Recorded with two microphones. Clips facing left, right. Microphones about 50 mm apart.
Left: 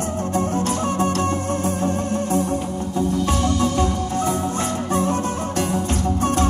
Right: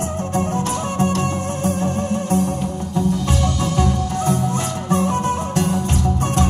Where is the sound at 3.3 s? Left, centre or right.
Left.